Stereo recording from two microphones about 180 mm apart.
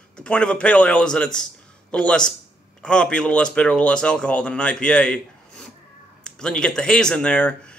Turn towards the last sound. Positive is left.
turn(degrees=5)  # may be behind; listen again after turning